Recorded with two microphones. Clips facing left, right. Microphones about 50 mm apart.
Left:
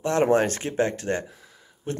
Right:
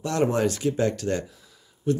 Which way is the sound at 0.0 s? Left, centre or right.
Left.